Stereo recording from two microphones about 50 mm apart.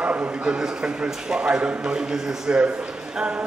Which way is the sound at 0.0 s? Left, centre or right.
Right.